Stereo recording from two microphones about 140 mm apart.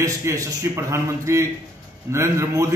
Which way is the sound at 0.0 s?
20° right (ahead or behind).